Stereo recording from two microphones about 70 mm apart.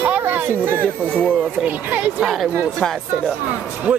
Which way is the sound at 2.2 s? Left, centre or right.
Centre.